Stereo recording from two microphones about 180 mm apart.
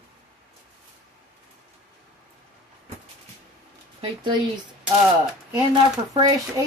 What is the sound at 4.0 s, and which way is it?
Speech, 25° right (ahead or behind).